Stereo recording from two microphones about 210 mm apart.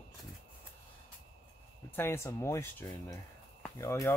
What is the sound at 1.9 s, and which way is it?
Speech, 10° left (ahead or behind).